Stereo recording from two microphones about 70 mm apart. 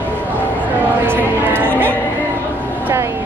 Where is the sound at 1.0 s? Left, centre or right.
Right.